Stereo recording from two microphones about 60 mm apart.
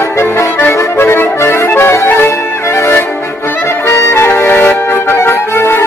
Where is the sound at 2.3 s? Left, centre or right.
Left.